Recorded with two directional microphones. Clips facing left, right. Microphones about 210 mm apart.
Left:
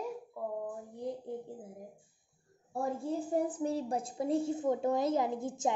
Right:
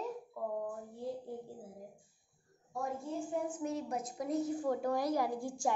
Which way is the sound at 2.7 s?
35° left (ahead or behind).